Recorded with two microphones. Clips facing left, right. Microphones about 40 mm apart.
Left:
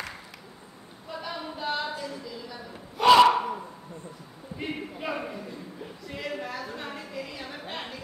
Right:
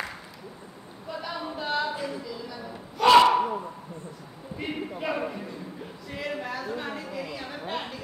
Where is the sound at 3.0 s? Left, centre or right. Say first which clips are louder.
Left 1 dB; centre.